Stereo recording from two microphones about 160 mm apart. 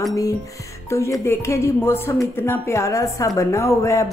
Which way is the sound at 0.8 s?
15° left (ahead or behind).